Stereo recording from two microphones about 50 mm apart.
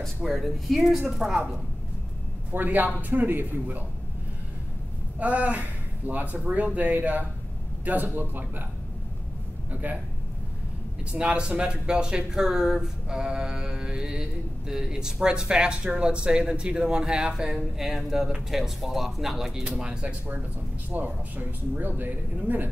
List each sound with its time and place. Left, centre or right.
0.3 s speech: centre
2.5 s speech: right
5.2 s speech: right
9.7 s speech: right
11.1 s speech: right
20.9 s speech: right